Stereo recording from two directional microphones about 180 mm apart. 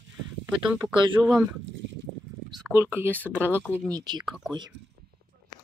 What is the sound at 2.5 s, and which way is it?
Speech, 20° right (ahead or behind).